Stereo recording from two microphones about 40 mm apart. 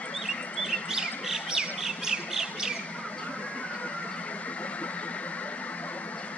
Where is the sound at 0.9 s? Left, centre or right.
Centre.